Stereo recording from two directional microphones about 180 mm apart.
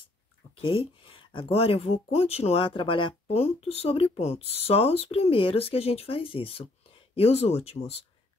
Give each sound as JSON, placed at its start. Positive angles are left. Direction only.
{"t": 0.6, "sound": "speech", "side_deg": 30}